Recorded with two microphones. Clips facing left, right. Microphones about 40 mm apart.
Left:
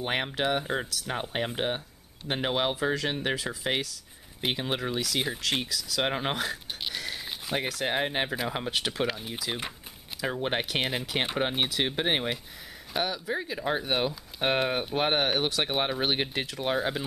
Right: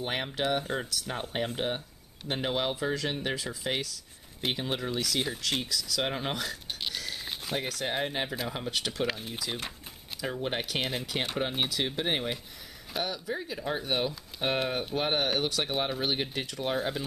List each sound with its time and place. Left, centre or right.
0.0 s speech: centre
2.7 s speech: centre
6.9 s a sound: centre
7.5 s speech: centre
9.0 s speech: centre
10.2 s speech: left